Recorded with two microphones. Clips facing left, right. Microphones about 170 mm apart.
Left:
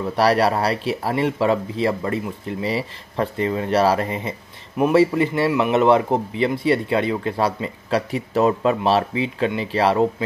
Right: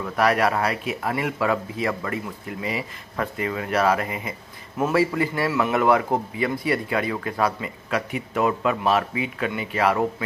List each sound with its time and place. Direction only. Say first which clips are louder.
0.0 s a man's voice: left 3 dB; 30° left (ahead or behind)
4.7 s a man's voice: left 5 dB; 20° left (ahead or behind)